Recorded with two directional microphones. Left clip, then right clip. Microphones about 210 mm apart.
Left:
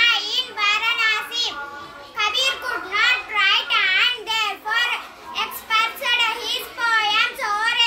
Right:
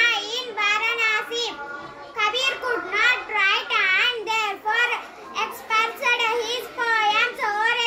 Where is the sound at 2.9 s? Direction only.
20° left (ahead or behind).